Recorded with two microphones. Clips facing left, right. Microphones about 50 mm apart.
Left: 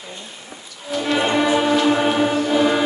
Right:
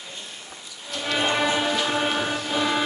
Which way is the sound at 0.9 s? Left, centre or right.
Centre.